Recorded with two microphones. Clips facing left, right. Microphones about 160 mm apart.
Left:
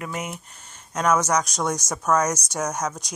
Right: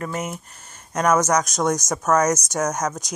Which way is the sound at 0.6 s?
55° right (ahead or behind).